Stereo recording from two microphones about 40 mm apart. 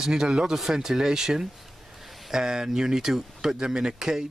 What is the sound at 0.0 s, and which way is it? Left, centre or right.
Speech, centre.